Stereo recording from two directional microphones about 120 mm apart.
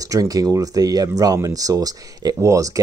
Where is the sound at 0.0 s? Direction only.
30° right (ahead or behind).